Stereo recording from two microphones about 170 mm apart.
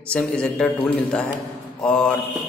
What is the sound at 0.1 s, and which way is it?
A man's voice, 5° left (ahead or behind).